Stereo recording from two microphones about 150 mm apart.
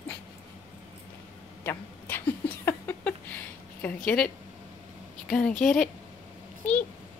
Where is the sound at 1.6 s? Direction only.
15° left (ahead or behind).